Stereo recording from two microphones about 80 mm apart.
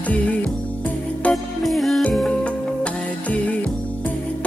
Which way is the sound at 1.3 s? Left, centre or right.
Centre.